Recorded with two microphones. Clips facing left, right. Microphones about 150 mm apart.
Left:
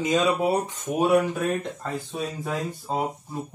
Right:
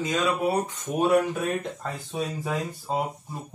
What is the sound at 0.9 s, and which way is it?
Speech, 5° left (ahead or behind).